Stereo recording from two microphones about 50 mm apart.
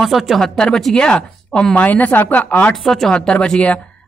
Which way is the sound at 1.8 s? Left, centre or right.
Left.